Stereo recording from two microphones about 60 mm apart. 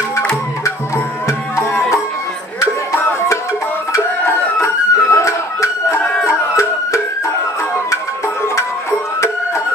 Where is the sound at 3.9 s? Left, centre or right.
Left.